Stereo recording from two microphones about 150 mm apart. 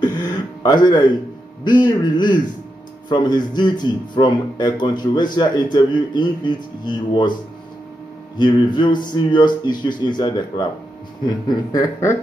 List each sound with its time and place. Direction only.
0.0 s throat clearing: 25° left (ahead or behind)
1.6 s speech: 30° left (ahead or behind)
8.4 s mantra: 30° left (ahead or behind)
9.8 s speech: 30° left (ahead or behind)